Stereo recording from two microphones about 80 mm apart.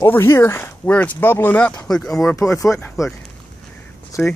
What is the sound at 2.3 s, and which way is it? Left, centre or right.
Speech, left.